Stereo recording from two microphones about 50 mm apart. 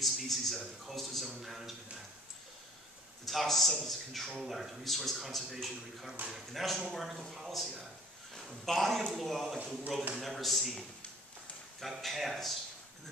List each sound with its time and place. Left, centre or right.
0.0 s a man's voice: centre
3.3 s speech: centre